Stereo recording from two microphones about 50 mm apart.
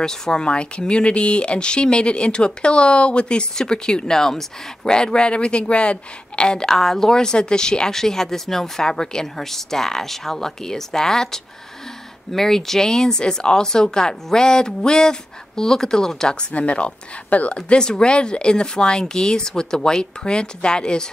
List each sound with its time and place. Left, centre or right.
0.0 s speech: centre